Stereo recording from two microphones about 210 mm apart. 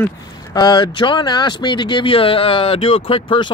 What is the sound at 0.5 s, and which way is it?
Speech, 20° left (ahead or behind).